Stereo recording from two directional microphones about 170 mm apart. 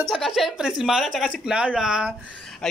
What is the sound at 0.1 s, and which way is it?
A man's voice, centre (ahead or behind).